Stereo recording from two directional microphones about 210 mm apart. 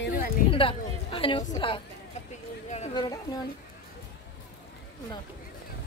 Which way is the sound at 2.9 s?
20° left (ahead or behind).